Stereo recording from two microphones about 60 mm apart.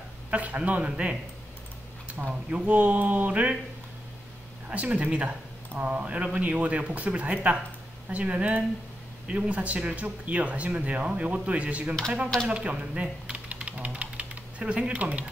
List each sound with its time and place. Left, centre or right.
0.3 s speech: right
2.5 s speech: right
4.6 s speech: right